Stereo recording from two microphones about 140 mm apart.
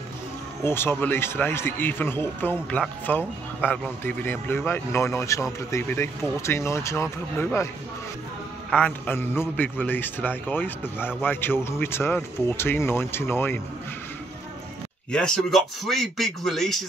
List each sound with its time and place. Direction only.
0.7 s a man's voice: 15° left (ahead or behind)
8.6 s a man's voice: 10° left (ahead or behind)
15.0 s a man's voice: 5° left (ahead or behind)